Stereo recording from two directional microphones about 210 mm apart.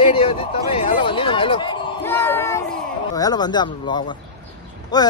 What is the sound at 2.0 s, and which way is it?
Speech, 10° left (ahead or behind).